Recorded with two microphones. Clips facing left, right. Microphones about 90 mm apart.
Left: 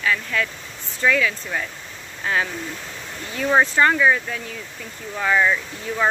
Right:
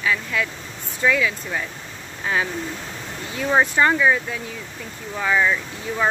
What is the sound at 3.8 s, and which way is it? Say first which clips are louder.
Speech: left 1 dB; 10° right (ahead or behind).